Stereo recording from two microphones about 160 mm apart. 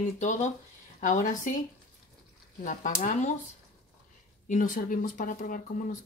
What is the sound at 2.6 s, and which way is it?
Speech, 50° left (ahead or behind).